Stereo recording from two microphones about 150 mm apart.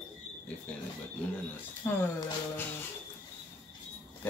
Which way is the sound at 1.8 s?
15° left (ahead or behind).